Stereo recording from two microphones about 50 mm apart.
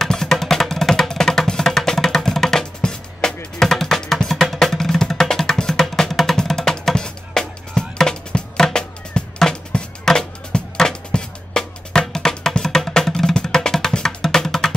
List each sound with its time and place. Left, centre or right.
0.0 s music: centre